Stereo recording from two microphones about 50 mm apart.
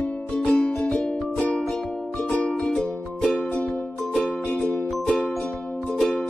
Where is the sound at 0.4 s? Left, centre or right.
Centre.